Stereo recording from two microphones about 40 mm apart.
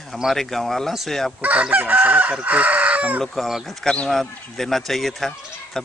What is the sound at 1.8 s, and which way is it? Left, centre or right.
Chicken, right.